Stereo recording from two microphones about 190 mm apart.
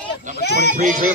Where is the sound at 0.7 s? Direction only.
40° right (ahead or behind).